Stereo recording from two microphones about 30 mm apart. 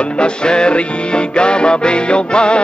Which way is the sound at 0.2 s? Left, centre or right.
Left.